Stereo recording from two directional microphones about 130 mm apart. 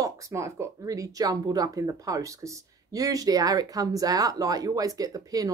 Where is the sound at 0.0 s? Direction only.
25° right (ahead or behind).